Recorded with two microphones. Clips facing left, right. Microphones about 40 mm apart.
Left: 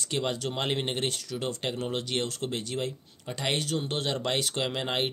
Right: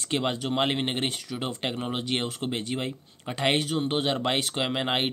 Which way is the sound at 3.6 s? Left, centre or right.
Centre.